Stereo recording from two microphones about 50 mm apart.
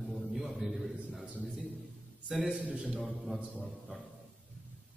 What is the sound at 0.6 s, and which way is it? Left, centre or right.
Speech, centre.